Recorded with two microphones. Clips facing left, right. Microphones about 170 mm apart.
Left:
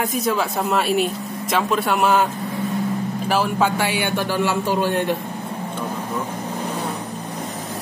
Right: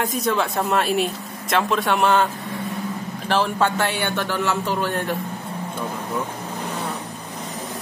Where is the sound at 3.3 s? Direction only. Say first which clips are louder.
Even; 10° left (ahead or behind).